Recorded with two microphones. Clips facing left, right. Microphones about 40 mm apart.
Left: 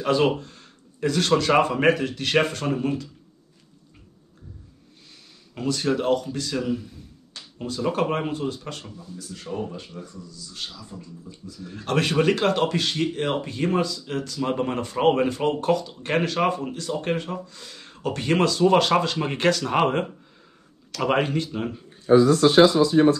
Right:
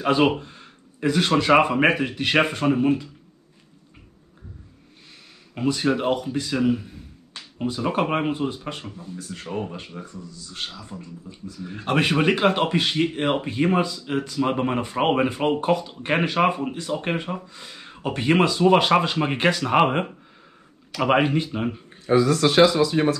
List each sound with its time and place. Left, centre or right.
0.0 s speech: right
5.5 s speech: centre
8.9 s speech: right
11.6 s speech: right
22.3 s speech: right